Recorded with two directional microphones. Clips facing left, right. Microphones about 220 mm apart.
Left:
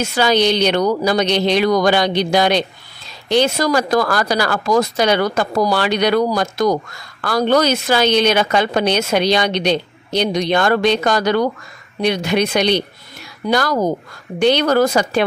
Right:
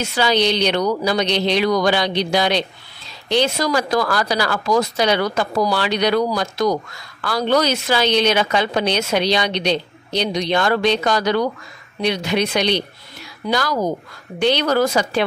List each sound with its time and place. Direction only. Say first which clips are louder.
0.0 s speech: left 3 dB; 45° left (ahead or behind)